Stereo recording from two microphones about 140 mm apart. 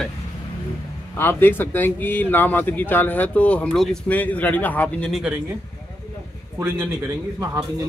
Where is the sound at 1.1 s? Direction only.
15° left (ahead or behind).